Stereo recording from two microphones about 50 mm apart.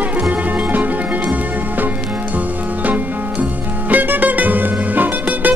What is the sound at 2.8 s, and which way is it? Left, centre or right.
Music, right.